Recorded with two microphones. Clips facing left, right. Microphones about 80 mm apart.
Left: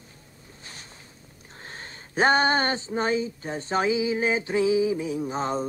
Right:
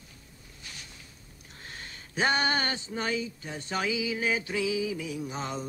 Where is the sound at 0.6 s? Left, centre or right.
Left.